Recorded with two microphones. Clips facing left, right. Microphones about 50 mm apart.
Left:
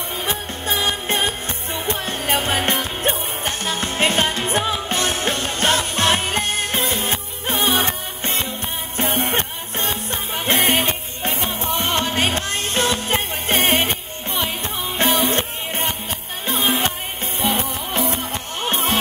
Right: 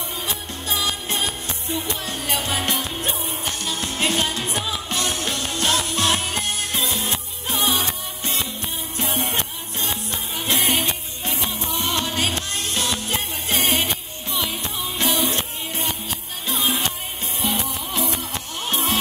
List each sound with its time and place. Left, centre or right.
0.2 s music: left